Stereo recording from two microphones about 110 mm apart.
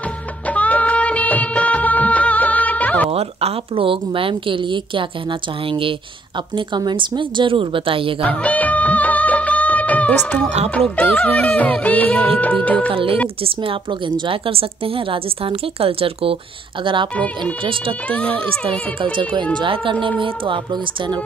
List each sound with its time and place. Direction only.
0.5 s music of bollywood: 15° left (ahead or behind)
3.1 s a woman's voice: 65° right (ahead or behind)
8.2 s music of bollywood: 10° left (ahead or behind)
11.0 s music: 15° left (ahead or behind)
12.9 s a woman's voice: 55° right (ahead or behind)
16.8 s a woman's voice: 50° right (ahead or behind)
18.0 s music: 10° left (ahead or behind)
19.5 s a woman's voice: 50° right (ahead or behind)